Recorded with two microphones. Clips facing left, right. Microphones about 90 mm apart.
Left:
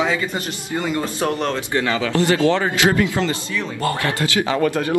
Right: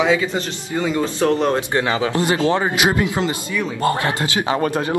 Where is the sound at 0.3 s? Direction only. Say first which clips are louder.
Right 2 dB; centre (ahead or behind).